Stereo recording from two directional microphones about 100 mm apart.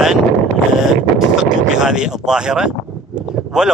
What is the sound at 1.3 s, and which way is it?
Boat, 5° right (ahead or behind).